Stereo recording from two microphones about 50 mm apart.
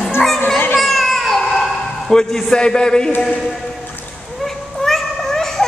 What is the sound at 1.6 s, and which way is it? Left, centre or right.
A man's voice, centre.